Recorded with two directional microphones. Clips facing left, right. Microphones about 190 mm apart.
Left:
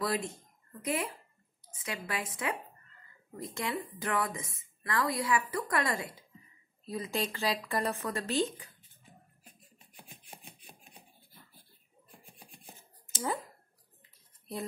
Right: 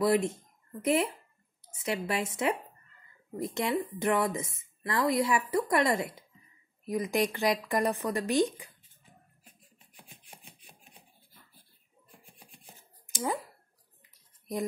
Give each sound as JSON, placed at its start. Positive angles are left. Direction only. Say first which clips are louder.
{"t": 0.0, "sound": "a woman's voice", "louder": "right 7 dB", "side_deg": -25}
{"t": 13.1, "sound": "speech", "louder": "right 2 dB", "side_deg": -15}